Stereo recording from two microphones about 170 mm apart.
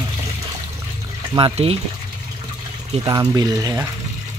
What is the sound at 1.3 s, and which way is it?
Speech, 35° right (ahead or behind).